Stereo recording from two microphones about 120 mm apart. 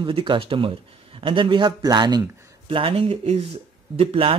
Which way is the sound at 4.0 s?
50° right (ahead or behind).